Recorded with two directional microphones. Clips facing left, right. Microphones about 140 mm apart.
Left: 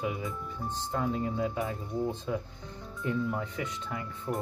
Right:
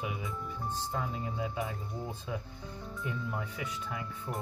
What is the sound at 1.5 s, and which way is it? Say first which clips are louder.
Speech: left 5 dB; centre (ahead or behind).